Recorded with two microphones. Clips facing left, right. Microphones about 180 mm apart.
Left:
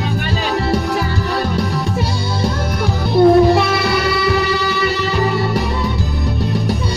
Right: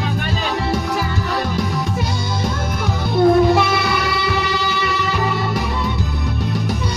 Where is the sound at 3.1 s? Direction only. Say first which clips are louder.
Left 3 dB; 30° left (ahead or behind).